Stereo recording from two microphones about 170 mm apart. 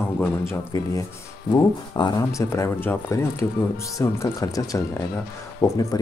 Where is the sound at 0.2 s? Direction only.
15° left (ahead or behind).